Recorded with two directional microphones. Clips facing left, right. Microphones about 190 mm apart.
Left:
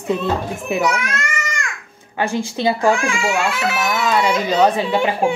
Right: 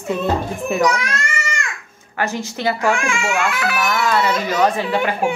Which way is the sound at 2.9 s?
35° left (ahead or behind).